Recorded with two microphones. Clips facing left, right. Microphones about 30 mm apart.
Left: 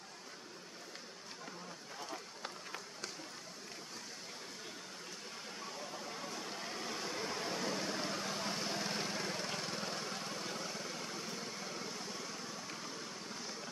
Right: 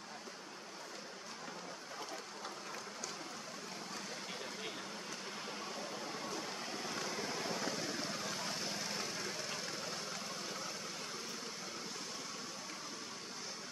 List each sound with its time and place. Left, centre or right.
6.2 s a sound: centre
7.1 s vehicle: centre; by 10.5 s left
10.5 s vehicle: centre